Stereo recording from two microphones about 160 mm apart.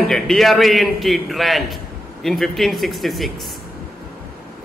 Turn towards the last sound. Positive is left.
turn(degrees=0)  # may be behind; listen again after turning